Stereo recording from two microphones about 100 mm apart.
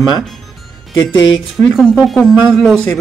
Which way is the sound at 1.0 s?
50° left (ahead or behind).